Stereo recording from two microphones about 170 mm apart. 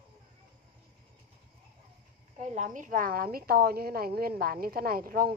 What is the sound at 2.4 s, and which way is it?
A woman's voice, 45° right (ahead or behind).